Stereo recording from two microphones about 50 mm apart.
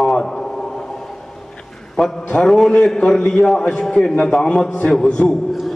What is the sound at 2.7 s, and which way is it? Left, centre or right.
A man's voice, left.